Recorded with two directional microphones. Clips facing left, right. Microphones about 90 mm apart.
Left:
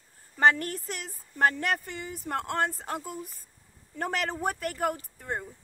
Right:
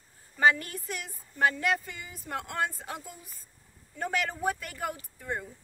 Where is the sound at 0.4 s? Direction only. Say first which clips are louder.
Left 2 dB; 50° left (ahead or behind).